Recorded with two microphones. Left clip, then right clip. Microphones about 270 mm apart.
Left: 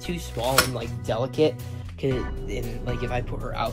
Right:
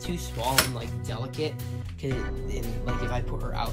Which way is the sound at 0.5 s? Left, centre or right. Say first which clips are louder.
Left 3 dB; centre.